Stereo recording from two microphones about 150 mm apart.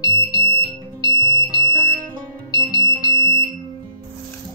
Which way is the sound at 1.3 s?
30° right (ahead or behind).